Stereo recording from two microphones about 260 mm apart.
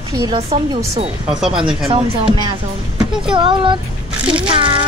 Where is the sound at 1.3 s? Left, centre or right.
Centre.